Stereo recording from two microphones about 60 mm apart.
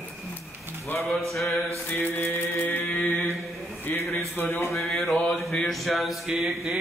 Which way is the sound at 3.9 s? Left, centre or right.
Left.